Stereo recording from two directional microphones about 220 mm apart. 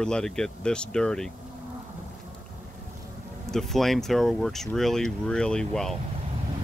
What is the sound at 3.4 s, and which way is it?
Speech, centre (ahead or behind).